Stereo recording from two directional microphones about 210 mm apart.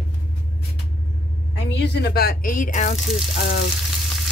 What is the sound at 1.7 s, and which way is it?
Frying, 55° left (ahead or behind).